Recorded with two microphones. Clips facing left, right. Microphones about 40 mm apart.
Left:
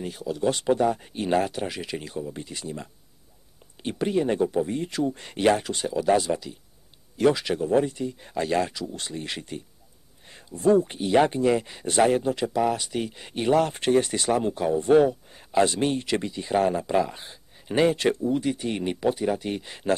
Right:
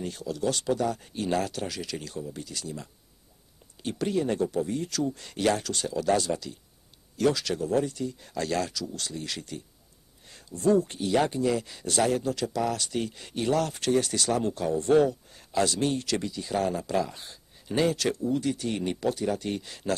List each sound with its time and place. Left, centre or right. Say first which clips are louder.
0.0 s speech: left 3 dB; centre